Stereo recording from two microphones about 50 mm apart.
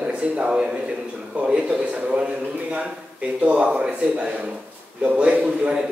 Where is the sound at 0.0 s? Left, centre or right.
Right.